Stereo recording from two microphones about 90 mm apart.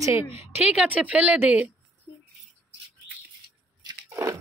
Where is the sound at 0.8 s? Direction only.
15° right (ahead or behind).